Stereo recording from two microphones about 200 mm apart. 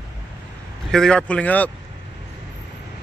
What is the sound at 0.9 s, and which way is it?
Speech, 5° left (ahead or behind).